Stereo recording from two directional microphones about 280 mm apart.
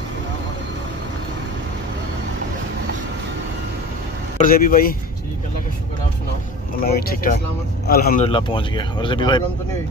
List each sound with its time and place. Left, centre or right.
4.4 s speech: left
6.8 s speech: left
8.3 s speech: centre